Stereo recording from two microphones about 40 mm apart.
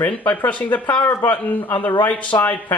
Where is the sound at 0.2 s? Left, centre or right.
Left.